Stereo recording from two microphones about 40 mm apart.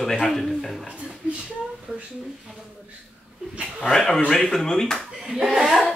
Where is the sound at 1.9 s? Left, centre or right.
Right.